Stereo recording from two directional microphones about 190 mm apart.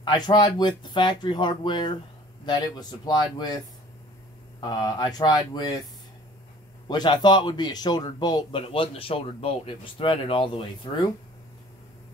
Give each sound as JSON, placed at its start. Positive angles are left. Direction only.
{"t": 0.0, "sound": "speech", "side_deg": 20}
{"t": 6.9, "sound": "speech", "side_deg": 20}